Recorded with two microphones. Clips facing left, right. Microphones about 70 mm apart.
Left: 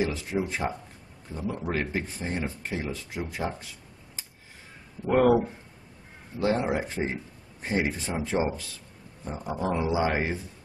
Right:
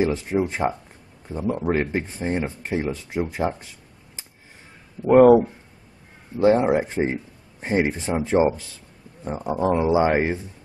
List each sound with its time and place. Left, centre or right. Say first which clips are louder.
0.0 s speech: right 6 dB; right
5.0 s speech: right 9 dB; right
6.4 s speech: right 8 dB; right